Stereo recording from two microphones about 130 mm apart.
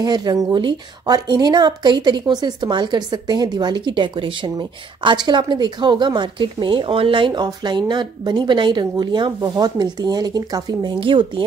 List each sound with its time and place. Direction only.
0.0 s speech: 35° right (ahead or behind)